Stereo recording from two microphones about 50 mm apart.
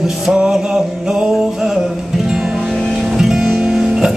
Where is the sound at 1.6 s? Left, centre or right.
Centre.